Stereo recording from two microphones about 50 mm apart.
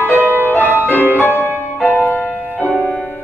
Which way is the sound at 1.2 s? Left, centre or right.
Left.